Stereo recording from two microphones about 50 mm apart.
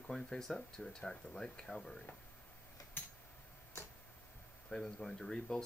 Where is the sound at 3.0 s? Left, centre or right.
Left.